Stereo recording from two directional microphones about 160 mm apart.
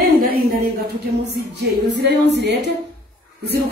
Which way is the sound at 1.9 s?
90° right.